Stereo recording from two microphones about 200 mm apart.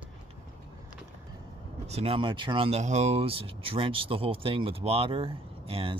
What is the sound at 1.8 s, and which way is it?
Speech, 30° right (ahead or behind).